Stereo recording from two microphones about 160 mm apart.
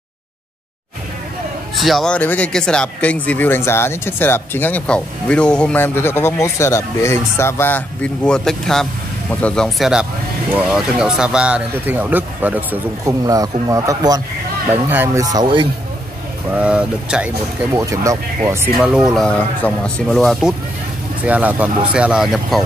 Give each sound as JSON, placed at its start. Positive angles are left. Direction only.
{"t": 1.8, "sound": "a man's voice", "side_deg": 0}
{"t": 13.2, "sound": "speech", "side_deg": -20}
{"t": 15.2, "sound": "speech", "side_deg": -30}
{"t": 16.4, "sound": "speech", "side_deg": -10}
{"t": 17.7, "sound": "speech", "side_deg": -20}
{"t": 18.8, "sound": "a man's voice", "side_deg": -5}